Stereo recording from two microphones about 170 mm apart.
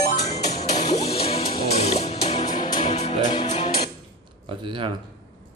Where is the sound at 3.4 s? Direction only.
40° left (ahead or behind).